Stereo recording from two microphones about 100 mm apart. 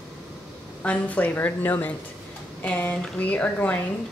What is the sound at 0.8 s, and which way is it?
Speech, 15° left (ahead or behind).